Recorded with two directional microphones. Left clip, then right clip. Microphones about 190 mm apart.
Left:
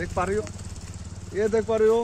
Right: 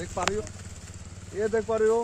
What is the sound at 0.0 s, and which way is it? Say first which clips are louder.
Speech: left 3 dB; 10° right (ahead or behind).